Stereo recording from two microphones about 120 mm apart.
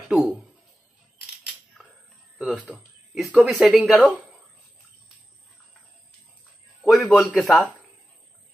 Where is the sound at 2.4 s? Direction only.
5° right (ahead or behind).